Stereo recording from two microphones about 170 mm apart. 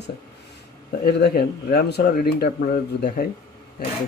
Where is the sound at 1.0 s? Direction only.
65° left (ahead or behind).